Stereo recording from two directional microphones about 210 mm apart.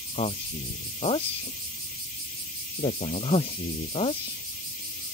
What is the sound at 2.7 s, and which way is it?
Speech, 30° left (ahead or behind).